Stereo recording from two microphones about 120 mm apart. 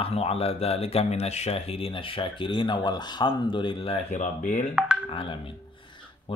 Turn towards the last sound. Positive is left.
turn(degrees=50)  # may be behind; listen again after turning